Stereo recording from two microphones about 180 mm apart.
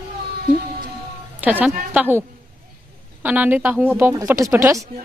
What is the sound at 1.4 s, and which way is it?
Speech, 10° right (ahead or behind).